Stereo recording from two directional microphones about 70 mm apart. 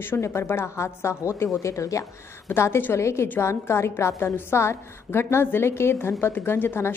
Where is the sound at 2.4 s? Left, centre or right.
Left.